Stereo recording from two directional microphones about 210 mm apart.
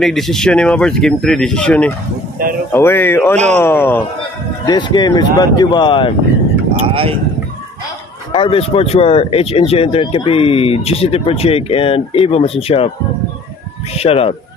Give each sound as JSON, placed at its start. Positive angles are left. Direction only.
{"t": 0.0, "sound": "speech", "side_deg": 0}
{"t": 4.6, "sound": "speech", "side_deg": 20}
{"t": 6.8, "sound": "speech", "side_deg": -25}
{"t": 8.3, "sound": "speech", "side_deg": 25}
{"t": 13.9, "sound": "speech", "side_deg": 30}